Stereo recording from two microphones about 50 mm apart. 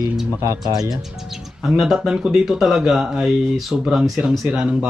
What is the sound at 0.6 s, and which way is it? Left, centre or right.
A man's voice, centre.